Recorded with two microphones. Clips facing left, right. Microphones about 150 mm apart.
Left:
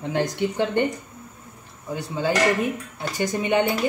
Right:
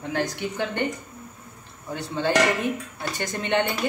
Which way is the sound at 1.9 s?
10° left (ahead or behind).